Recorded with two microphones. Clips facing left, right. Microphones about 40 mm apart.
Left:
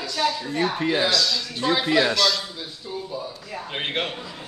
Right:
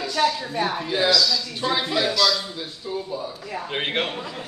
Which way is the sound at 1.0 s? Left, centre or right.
Left.